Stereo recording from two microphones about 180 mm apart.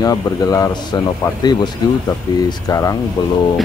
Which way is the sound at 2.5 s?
20° left (ahead or behind).